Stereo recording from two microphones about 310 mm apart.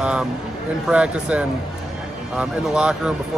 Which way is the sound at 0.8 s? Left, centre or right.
Centre.